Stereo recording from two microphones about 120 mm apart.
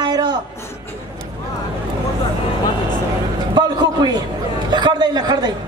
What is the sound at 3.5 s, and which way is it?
A man's voice, 35° right (ahead or behind).